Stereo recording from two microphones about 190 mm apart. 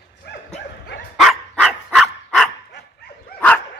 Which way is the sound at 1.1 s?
Centre (ahead or behind).